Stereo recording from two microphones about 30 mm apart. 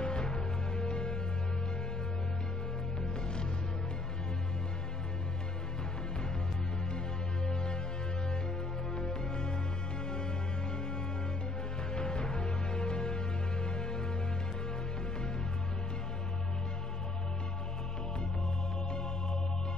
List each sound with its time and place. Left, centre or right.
0.0 s music: left
7.4 s music: left
8.9 s music: left
11.9 s music: left